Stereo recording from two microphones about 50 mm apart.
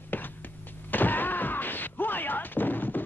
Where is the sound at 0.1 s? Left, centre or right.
Left.